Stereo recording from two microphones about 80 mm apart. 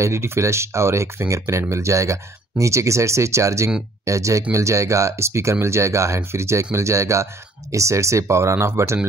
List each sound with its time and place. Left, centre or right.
0.0 s speech: right